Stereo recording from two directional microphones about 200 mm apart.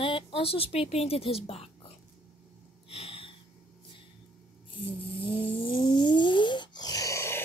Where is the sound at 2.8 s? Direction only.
30° left (ahead or behind).